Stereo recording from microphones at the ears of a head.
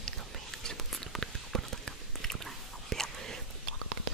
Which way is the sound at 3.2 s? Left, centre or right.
Right.